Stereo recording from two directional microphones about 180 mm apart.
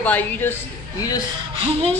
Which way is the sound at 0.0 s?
10° left (ahead or behind).